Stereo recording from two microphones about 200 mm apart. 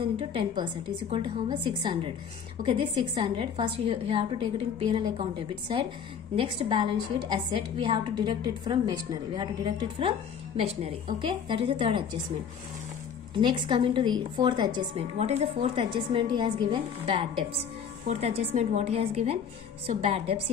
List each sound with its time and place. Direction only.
0.0 s a woman's voice: 25° right (ahead or behind)
6.3 s a woman's voice: 25° right (ahead or behind)
13.4 s a woman's voice: 25° right (ahead or behind)